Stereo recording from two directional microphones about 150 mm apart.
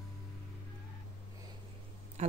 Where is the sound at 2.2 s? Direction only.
50° right (ahead or behind).